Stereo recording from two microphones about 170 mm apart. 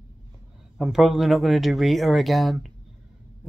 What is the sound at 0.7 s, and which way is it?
Speech, centre (ahead or behind).